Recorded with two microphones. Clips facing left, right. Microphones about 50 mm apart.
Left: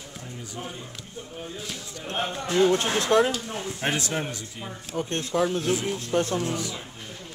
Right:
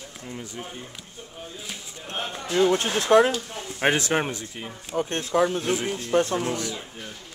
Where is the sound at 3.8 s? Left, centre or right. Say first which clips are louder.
Right 7 dB; right.